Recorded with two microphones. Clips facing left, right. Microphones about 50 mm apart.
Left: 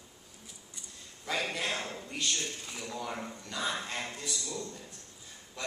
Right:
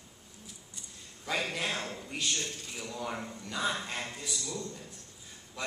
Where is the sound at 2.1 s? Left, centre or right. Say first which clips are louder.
Left 1 dB; centre.